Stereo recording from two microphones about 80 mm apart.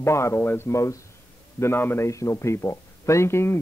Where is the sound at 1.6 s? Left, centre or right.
Left.